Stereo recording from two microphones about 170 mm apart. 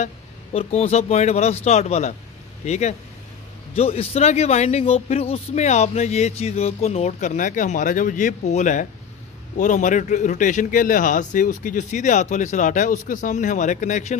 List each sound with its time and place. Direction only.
0.0 s a man's voice: 40° left (ahead or behind)